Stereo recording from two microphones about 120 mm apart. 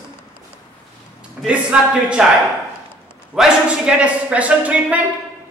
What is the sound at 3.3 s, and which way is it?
A man's voice, 5° right (ahead or behind).